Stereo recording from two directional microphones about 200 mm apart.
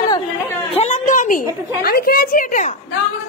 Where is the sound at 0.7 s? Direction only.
35° left (ahead or behind).